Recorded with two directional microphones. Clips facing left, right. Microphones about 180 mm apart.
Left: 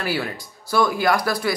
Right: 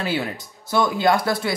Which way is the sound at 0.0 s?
20° right (ahead or behind).